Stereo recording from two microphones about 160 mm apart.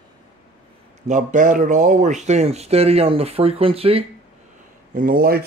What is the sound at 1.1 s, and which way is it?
Speech, 50° right (ahead or behind).